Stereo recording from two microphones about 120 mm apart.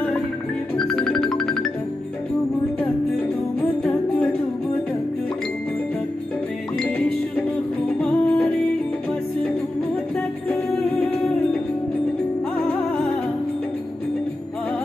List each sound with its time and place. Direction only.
0.7 s music: 5° left (ahead or behind)
8.0 s music: 10° left (ahead or behind)